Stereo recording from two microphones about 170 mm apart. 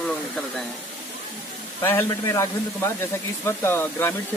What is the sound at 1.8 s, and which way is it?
Speech, 15° left (ahead or behind).